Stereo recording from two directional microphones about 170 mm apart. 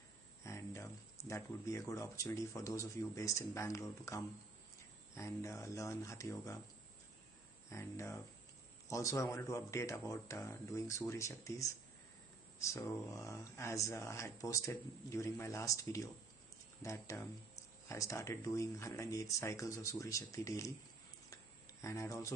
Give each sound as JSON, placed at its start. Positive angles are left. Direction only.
{"t": 0.4, "sound": "speech", "side_deg": 15}
{"t": 7.7, "sound": "speech", "side_deg": 15}
{"t": 21.8, "sound": "speech", "side_deg": 15}